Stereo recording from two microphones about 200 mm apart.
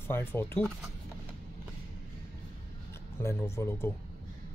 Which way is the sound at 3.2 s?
15° left (ahead or behind).